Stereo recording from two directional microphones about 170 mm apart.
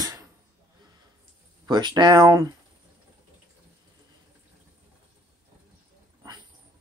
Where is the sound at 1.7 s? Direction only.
25° right (ahead or behind).